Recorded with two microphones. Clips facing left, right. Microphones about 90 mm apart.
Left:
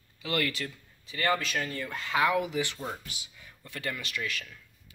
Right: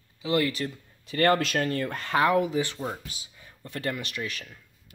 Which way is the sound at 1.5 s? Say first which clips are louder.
Right 6 dB; 50° right (ahead or behind).